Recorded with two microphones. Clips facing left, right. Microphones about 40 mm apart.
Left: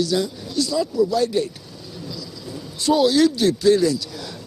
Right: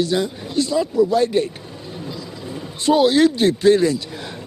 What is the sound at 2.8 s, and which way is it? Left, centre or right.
Speech, right.